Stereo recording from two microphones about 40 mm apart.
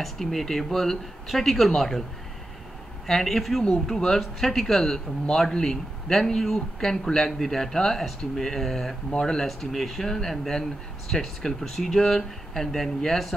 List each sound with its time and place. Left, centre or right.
0.2 s a man's voice: centre
3.1 s a man's voice: centre
9.5 s a man's voice: centre